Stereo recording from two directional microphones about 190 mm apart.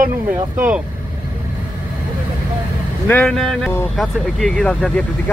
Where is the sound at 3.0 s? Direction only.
10° left (ahead or behind).